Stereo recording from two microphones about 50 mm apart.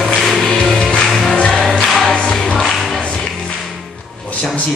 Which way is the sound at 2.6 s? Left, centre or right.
Centre.